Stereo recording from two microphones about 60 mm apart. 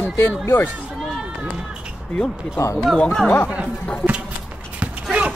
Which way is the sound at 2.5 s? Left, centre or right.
Left.